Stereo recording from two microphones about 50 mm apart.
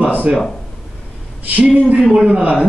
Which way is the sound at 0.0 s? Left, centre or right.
Right.